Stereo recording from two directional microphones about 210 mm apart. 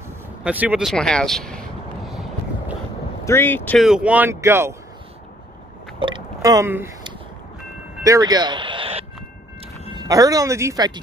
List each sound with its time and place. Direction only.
0.4 s speech: 5° right (ahead or behind)
3.3 s speech: 10° left (ahead or behind)
3.8 s speech: 5° right (ahead or behind)
5.9 s a sound: 20° right (ahead or behind)
8.0 s a woman's voice: 15° right (ahead or behind)